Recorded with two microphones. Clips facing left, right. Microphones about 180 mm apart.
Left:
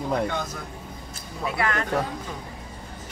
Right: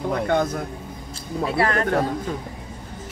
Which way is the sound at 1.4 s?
35° right (ahead or behind).